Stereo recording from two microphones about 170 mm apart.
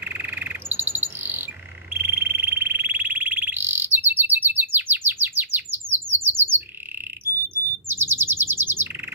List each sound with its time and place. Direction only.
0.0 s bird: 10° right (ahead or behind)
2.0 s frog: 10° right (ahead or behind)
7.5 s bird: 15° right (ahead or behind)